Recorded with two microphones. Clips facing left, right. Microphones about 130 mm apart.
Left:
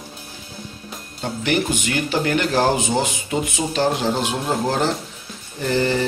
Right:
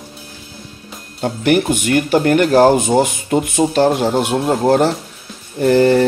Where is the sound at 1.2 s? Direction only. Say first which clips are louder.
Right 7 dB; 55° right (ahead or behind).